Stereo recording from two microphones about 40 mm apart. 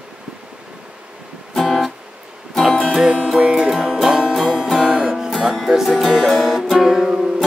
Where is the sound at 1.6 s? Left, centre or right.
Centre.